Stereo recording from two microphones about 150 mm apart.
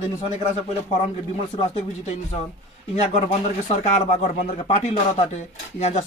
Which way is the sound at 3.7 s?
50° left (ahead or behind).